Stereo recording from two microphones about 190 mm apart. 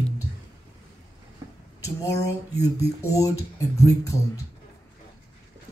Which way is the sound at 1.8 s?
15° left (ahead or behind).